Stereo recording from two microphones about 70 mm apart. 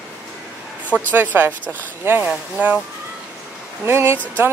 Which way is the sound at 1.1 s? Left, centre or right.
Right.